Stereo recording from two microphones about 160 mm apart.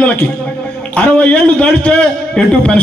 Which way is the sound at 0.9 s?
10° left (ahead or behind).